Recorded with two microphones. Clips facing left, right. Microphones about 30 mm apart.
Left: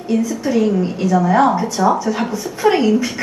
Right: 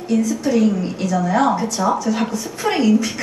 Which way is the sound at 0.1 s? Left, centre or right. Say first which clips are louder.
Even; left.